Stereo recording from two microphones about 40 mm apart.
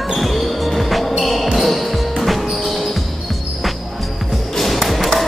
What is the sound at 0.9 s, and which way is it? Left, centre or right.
Music, centre.